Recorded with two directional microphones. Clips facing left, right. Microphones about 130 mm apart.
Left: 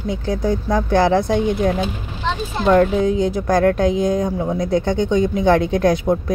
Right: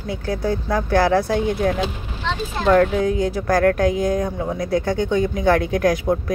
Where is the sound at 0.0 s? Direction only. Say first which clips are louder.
Left 3 dB; 20° left (ahead or behind).